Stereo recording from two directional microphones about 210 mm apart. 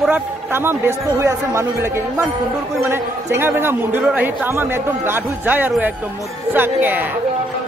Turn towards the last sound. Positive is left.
turn(degrees=-10)  # may be behind; listen again after turning